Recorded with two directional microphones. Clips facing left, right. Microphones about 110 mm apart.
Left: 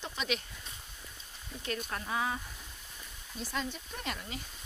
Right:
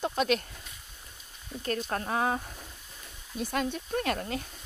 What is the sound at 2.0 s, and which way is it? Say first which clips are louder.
Speech: right 4 dB; 50° right (ahead or behind).